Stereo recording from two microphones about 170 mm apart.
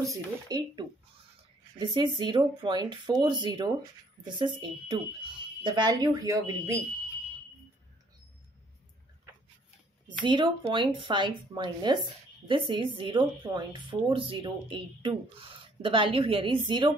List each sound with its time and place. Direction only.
0.0 s speech: 20° right (ahead or behind)
10.2 s speech: 30° right (ahead or behind)